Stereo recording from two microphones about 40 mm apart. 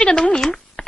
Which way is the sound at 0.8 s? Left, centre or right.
Left.